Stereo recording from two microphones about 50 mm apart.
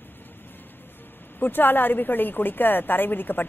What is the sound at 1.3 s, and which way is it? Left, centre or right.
A woman's voice, left.